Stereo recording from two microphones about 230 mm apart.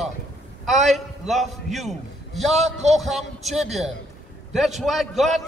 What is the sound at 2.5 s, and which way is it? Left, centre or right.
Speech, right.